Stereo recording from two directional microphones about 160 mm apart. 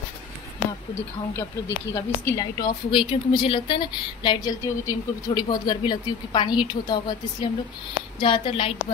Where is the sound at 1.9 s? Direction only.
20° left (ahead or behind).